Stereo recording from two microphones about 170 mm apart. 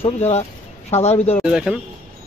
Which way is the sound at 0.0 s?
40° left (ahead or behind).